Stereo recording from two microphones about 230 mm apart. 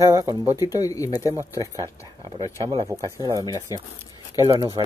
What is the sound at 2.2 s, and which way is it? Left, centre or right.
Speech, right.